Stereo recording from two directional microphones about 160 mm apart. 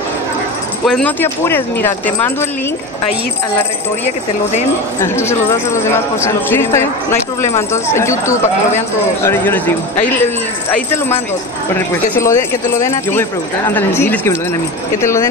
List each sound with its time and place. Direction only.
0.8 s speech: 5° left (ahead or behind)
5.0 s speech: 15° left (ahead or behind)
11.7 s speech: 15° left (ahead or behind)